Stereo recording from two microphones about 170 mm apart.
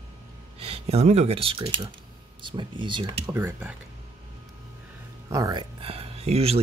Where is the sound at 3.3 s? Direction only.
15° right (ahead or behind).